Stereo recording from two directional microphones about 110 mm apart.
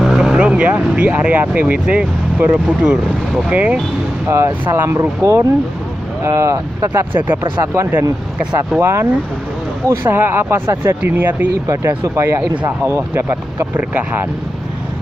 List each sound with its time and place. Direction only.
0.0 s speech: 5° right (ahead or behind)
4.3 s speech: 25° right (ahead or behind)